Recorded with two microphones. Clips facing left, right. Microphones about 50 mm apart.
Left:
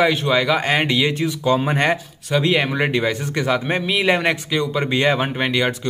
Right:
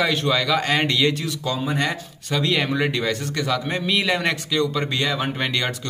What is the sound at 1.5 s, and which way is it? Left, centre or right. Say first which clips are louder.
Speech: left 6 dB; left.